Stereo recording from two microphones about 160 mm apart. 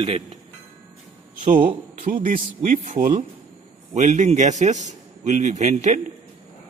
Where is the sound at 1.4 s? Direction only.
55° right (ahead or behind).